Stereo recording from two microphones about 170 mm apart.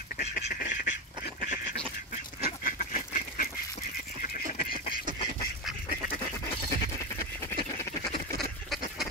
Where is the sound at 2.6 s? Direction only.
55° left (ahead or behind).